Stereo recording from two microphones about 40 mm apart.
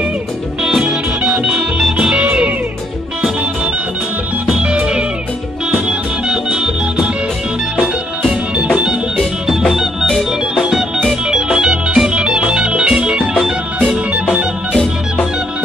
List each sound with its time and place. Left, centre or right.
0.7 s music: centre
4.6 s music: right
9.5 s organ: centre; by 13.4 s right
13.7 s music: centre